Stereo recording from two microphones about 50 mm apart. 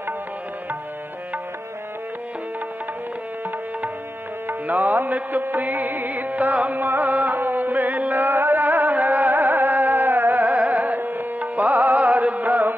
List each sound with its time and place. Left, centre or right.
4.5 s music: right